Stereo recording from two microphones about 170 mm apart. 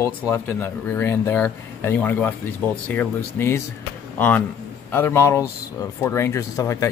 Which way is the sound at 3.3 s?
15° left (ahead or behind).